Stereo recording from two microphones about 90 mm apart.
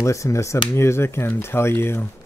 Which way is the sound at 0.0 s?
35° left (ahead or behind).